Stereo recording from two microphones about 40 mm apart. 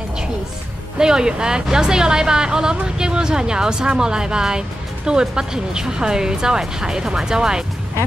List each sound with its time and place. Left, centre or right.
0.9 s a woman's voice: centre